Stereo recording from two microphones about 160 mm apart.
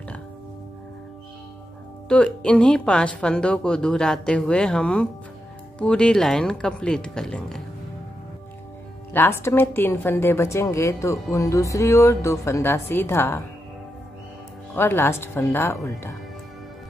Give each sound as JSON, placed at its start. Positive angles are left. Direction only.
{"t": 2.0, "sound": "speech", "side_deg": 5}
{"t": 9.1, "sound": "a woman's voice", "side_deg": 15}
{"t": 14.8, "sound": "a woman's voice", "side_deg": 15}